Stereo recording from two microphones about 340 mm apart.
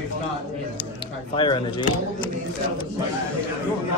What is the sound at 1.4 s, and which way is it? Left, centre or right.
Speech, centre.